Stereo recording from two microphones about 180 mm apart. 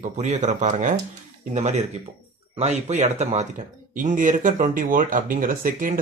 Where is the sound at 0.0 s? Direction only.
40° right (ahead or behind).